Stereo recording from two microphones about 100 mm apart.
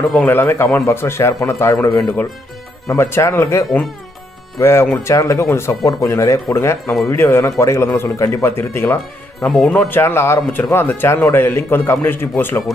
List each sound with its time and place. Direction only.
0.2 s a man's voice: 20° left (ahead or behind)